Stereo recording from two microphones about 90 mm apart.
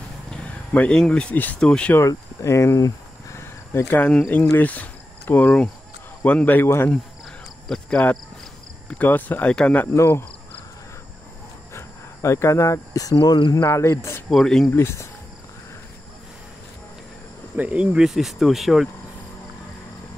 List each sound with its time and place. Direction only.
0.9 s speech: 10° left (ahead or behind)
2.0 s cricket: 35° left (ahead or behind)
3.8 s speech: 15° left (ahead or behind)
7.6 s speech: 5° left (ahead or behind)
8.8 s speech: 15° left (ahead or behind)
9.9 s speech: 30° left (ahead or behind)
11.7 s speech: 30° left (ahead or behind); by 13.6 s 50° left (ahead or behind)
13.6 s speech: 30° left (ahead or behind)
14.3 s speech: 5° left (ahead or behind)
14.7 s speech: 30° left (ahead or behind)
17.6 s speech: 15° right (ahead or behind)